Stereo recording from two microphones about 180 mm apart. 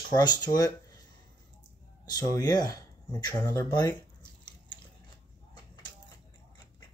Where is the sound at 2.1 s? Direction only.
20° left (ahead or behind).